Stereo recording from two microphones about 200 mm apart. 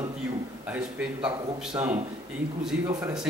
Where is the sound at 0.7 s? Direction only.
5° right (ahead or behind).